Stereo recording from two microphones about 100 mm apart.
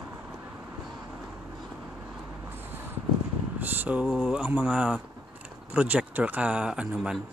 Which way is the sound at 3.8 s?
15° right (ahead or behind).